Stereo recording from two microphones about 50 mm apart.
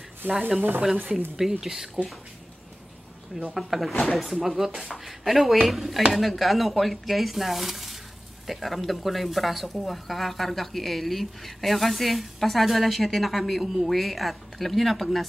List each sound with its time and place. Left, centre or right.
0.2 s speech: right
1.6 s speech: centre
3.5 s speech: centre